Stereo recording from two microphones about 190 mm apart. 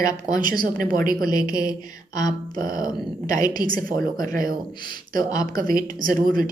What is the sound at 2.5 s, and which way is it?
A woman's voice, 45° right (ahead or behind).